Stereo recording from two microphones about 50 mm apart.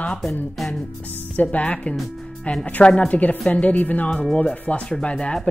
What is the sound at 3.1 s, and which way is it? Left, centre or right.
Speech, left.